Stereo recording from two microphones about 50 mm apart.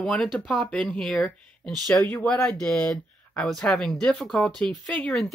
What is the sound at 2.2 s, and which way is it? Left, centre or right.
Speech, left.